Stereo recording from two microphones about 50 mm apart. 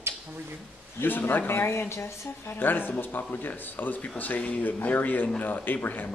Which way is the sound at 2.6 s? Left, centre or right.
Left.